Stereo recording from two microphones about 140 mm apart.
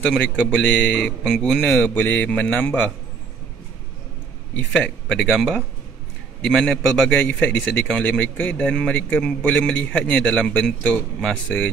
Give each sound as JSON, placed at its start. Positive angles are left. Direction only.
{"t": 0.0, "sound": "a man's voice", "side_deg": 5}
{"t": 4.6, "sound": "a man's voice", "side_deg": 10}